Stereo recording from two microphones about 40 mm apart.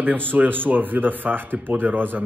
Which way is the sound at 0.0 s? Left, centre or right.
Right.